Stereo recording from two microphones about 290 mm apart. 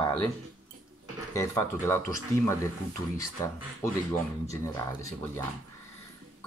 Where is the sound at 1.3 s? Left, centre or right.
Centre.